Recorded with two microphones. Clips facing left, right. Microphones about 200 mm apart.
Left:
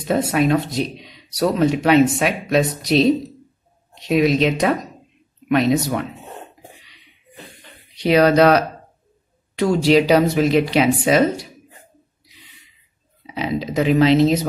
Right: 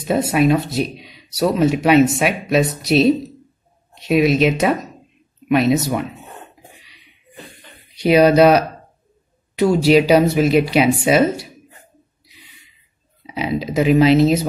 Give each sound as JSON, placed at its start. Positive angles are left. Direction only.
{"t": 0.0, "sound": "speech", "side_deg": -10}
{"t": 7.9, "sound": "speech", "side_deg": -10}
{"t": 13.3, "sound": "speech", "side_deg": -10}